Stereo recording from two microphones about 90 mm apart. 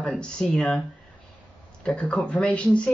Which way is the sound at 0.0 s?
10° left (ahead or behind).